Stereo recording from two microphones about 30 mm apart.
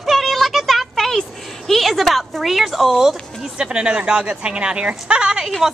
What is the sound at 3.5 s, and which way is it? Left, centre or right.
Speech, right.